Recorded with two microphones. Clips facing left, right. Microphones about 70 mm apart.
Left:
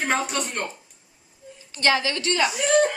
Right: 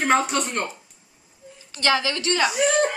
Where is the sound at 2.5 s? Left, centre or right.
Centre.